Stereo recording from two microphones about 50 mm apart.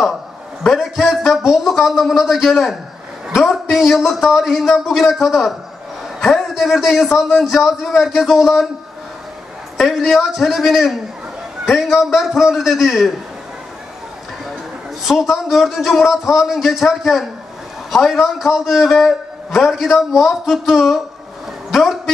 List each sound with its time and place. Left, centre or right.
0.7 s a man's voice: centre
9.8 s a man's voice: centre
15.1 s a man's voice: left
15.4 s a man's voice: centre